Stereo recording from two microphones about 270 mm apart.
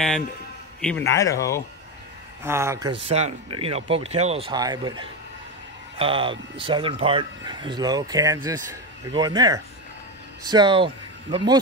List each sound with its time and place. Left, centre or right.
0.7 s speech: centre
2.4 s speech: centre